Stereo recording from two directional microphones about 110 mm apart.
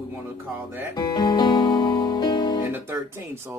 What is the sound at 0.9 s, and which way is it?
Music, 40° left (ahead or behind).